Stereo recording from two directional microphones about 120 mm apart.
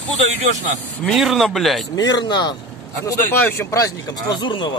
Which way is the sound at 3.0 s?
20° left (ahead or behind).